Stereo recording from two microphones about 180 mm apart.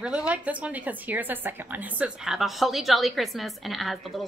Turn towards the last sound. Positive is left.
turn(degrees=0)  # may be behind; listen again after turning